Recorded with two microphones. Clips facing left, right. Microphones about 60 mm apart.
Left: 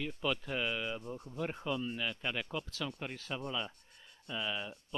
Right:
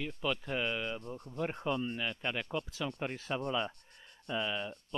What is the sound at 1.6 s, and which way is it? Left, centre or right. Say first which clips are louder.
Speech: right 3 dB; centre.